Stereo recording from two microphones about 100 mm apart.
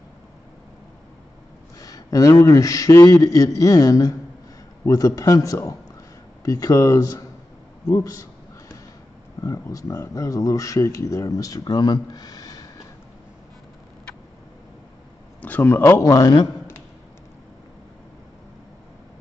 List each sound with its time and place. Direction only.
1.8 s speech: 35° left (ahead or behind)
9.4 s speech: 35° left (ahead or behind)
15.4 s speech: 20° left (ahead or behind)